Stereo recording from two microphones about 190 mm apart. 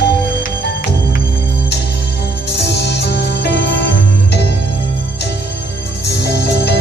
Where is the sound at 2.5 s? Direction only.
65° left (ahead or behind).